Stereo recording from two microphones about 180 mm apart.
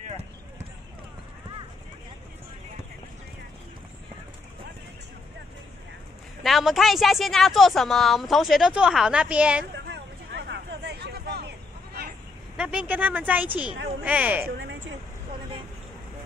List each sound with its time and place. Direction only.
6.4 s speech: centre (ahead or behind)
9.8 s vehicle: 65° right (ahead or behind)
12.5 s speech: 5° right (ahead or behind)